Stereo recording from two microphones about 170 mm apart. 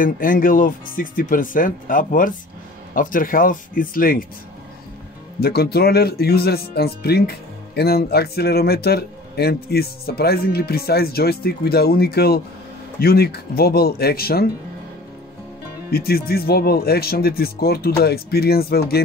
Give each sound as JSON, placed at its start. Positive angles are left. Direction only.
{"t": 0.0, "sound": "speech", "side_deg": 55}
{"t": 5.4, "sound": "speech", "side_deg": 70}
{"t": 15.9, "sound": "speech", "side_deg": 65}